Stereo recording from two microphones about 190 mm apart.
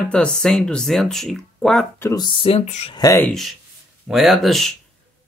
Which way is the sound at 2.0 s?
20° left (ahead or behind).